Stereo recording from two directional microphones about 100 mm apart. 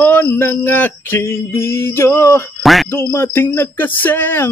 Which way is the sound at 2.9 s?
25° left (ahead or behind).